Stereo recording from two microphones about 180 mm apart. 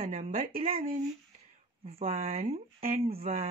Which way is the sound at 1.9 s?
35° right (ahead or behind).